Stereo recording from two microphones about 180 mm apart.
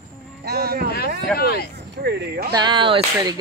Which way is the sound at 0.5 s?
60° right (ahead or behind).